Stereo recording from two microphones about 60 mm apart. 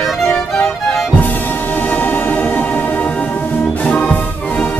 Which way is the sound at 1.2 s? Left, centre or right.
Left.